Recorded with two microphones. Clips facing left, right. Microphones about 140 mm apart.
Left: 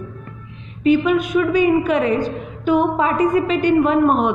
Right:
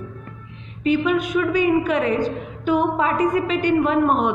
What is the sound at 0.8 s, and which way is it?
A woman's voice, 20° left (ahead or behind).